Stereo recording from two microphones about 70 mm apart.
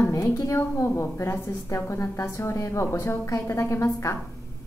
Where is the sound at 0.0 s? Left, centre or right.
Left.